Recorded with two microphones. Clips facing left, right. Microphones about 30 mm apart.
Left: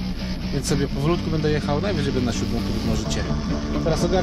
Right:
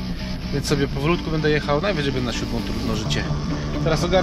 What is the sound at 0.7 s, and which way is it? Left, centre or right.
A man's voice, right.